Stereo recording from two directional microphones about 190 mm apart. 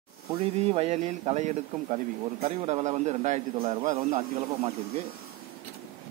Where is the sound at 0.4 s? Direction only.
30° right (ahead or behind).